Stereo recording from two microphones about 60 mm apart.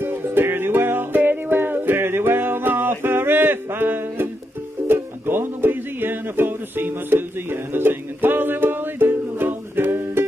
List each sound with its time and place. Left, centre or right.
0.0 s music: right